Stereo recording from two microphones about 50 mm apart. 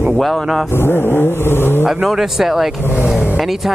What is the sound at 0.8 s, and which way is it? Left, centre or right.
Vehicle, left.